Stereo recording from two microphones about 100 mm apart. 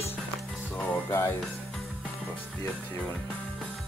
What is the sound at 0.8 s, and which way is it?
Music, 25° left (ahead or behind).